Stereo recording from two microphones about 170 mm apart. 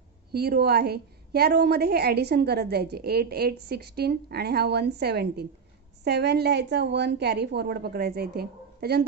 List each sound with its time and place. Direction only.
0.3 s a woman's voice: 70° right (ahead or behind)